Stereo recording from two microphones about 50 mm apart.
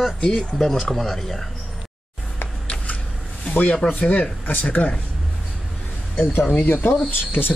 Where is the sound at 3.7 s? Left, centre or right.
Centre.